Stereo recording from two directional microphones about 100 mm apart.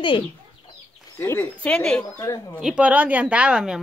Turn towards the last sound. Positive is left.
turn(degrees=-5)  # may be behind; listen again after turning